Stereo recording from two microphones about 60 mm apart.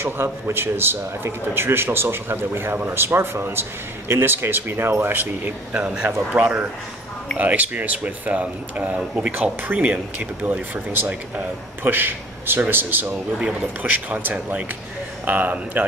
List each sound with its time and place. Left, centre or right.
0.0 s speech: right
9.3 s speech: right
14.0 s speech: right